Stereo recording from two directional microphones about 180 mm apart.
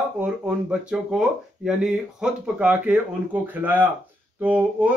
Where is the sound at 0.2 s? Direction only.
5° right (ahead or behind).